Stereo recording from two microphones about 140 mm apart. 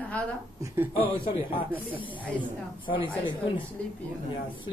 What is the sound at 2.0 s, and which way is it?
A man's voice, 35° left (ahead or behind).